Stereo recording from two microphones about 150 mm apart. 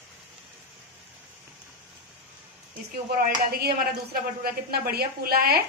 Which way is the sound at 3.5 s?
90° right.